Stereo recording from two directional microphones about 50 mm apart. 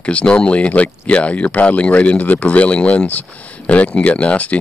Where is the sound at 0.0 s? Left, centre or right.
Left.